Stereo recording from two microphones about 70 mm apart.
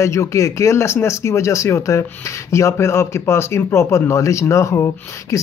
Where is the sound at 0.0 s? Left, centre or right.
Left.